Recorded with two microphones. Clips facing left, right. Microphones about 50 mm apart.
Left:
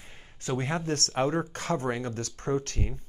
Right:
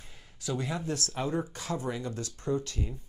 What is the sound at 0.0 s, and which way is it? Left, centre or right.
Speech, left.